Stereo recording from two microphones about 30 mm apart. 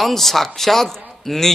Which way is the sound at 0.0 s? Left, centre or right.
Centre.